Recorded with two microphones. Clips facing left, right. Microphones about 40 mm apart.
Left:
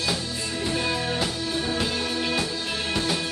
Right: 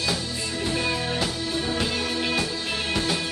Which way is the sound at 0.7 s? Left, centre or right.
Centre.